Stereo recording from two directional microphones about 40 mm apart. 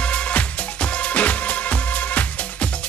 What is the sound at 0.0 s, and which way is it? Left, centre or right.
Music, left.